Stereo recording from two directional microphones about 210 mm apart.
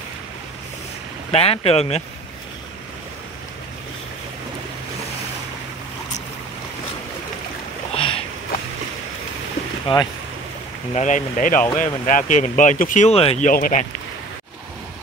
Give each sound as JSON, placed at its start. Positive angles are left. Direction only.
{"t": 1.3, "sound": "speech", "side_deg": 30}
{"t": 7.9, "sound": "sniff", "side_deg": 25}
{"t": 9.9, "sound": "speech", "side_deg": 25}
{"t": 11.0, "sound": "speech", "side_deg": 35}